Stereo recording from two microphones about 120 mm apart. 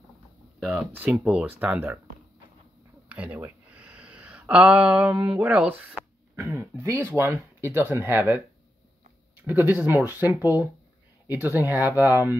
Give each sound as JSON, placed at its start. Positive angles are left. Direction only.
{"t": 0.6, "sound": "speech", "side_deg": -10}
{"t": 3.1, "sound": "speech", "side_deg": -10}
{"t": 6.3, "sound": "speech", "side_deg": -25}
{"t": 9.5, "sound": "speech", "side_deg": -15}